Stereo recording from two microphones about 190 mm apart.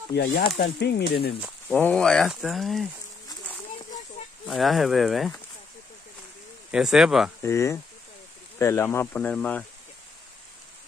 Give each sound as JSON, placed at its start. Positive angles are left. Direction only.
{"t": 0.1, "sound": "speech", "side_deg": 60}
{"t": 1.8, "sound": "speech", "side_deg": 5}
{"t": 4.5, "sound": "speech", "side_deg": 0}
{"t": 6.7, "sound": "speech", "side_deg": -5}
{"t": 7.4, "sound": "speech", "side_deg": 15}